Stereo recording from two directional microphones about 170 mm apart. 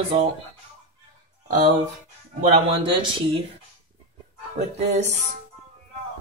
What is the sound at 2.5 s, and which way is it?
Speech, 30° right (ahead or behind).